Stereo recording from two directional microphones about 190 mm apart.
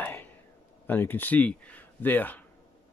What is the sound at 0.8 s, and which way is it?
Speech, 10° left (ahead or behind).